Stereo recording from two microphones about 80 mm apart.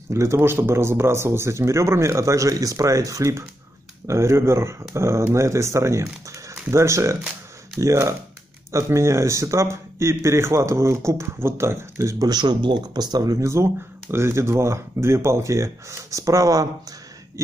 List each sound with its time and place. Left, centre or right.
0.1 s speech: right
12.3 s speech: right